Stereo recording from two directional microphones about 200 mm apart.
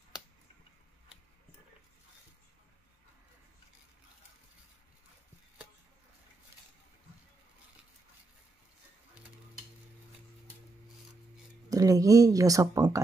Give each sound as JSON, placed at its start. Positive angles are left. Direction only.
{"t": 11.7, "sound": "speech", "side_deg": -15}